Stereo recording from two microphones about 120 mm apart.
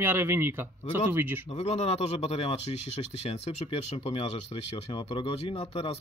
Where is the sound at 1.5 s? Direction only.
65° left (ahead or behind).